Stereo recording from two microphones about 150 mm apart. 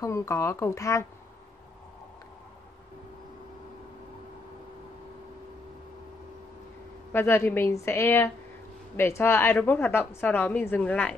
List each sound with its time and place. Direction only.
0.0 s speech: 20° left (ahead or behind)
7.1 s a woman's voice: 15° left (ahead or behind)